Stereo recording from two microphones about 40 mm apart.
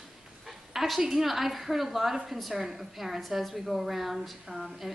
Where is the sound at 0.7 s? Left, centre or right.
Centre.